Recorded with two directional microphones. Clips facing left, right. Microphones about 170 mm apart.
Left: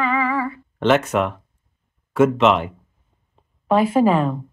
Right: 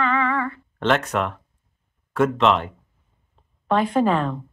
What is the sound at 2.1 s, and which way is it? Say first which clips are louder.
Speech: left 3 dB; 5° left (ahead or behind).